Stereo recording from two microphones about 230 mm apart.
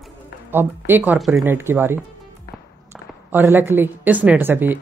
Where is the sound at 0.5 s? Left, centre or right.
Centre.